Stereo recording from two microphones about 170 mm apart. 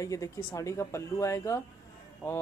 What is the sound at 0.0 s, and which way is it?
Speech, 20° left (ahead or behind).